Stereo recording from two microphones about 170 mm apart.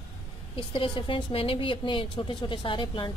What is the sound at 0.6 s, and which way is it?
Speech, 30° left (ahead or behind).